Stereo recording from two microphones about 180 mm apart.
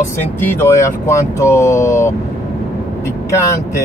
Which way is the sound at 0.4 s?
15° left (ahead or behind).